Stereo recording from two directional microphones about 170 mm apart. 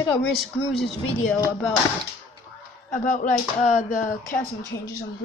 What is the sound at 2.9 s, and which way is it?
Speech, 50° left (ahead or behind).